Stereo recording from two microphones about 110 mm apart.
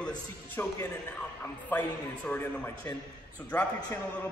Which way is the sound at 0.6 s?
20° left (ahead or behind).